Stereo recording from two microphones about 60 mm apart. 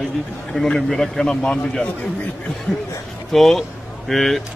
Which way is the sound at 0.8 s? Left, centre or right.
Centre.